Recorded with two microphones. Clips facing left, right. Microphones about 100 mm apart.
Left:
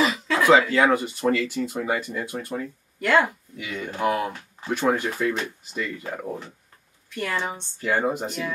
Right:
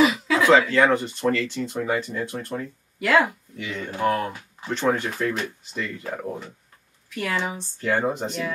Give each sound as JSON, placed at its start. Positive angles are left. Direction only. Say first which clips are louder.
{"t": 0.0, "sound": "speech", "louder": "right 2 dB", "side_deg": 0}